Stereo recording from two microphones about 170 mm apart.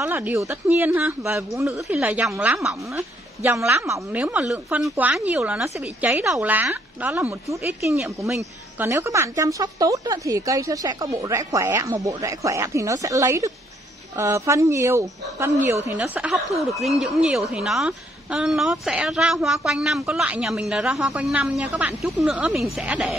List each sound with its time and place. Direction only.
0.0 s a woman's voice: 10° right (ahead or behind)
16.0 s speech: 5° right (ahead or behind)